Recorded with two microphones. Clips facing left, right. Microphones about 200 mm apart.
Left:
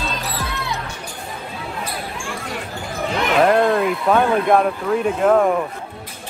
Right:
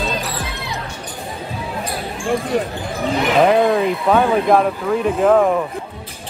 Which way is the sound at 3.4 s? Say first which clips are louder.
Right 1 dB; centre (ahead or behind).